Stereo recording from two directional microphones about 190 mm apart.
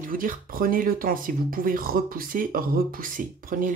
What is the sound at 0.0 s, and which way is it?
Speech, 45° right (ahead or behind).